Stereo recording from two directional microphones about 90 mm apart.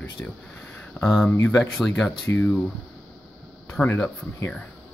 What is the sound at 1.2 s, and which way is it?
Speech, 25° left (ahead or behind).